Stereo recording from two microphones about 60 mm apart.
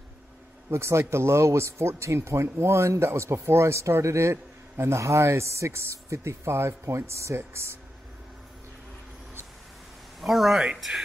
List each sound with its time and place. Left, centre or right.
0.7 s speech: right
10.2 s speech: centre